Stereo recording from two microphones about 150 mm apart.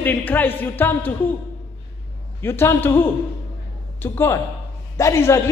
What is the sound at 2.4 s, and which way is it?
Speech, 15° left (ahead or behind).